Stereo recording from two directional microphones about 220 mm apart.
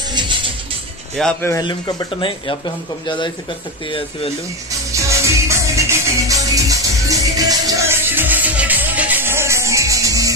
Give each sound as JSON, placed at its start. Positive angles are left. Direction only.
{"t": 0.1, "sound": "music", "side_deg": -20}
{"t": 1.1, "sound": "speech", "side_deg": 0}
{"t": 1.5, "sound": "speech", "side_deg": 20}
{"t": 4.9, "sound": "music", "side_deg": -15}